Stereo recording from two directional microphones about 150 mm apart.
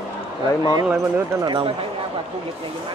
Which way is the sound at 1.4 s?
30° right (ahead or behind).